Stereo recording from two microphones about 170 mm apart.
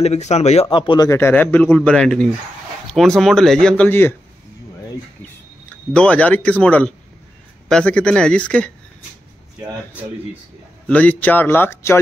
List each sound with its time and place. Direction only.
0.0 s a man's voice: 40° left (ahead or behind); by 4.1 s 10° left (ahead or behind)
5.9 s a man's voice: 10° left (ahead or behind)
10.9 s a man's voice: 10° left (ahead or behind)